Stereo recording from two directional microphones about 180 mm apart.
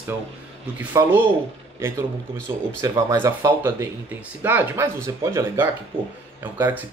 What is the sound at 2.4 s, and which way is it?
Speech, 15° right (ahead or behind).